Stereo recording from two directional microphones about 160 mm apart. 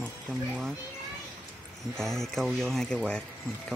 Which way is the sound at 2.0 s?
Centre (ahead or behind).